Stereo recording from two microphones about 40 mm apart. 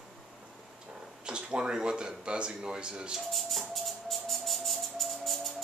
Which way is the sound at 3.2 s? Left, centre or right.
Centre.